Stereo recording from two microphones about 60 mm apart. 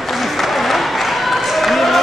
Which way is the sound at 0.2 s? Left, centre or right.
Centre.